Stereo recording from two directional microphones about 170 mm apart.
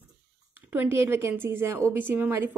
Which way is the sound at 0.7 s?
15° right (ahead or behind).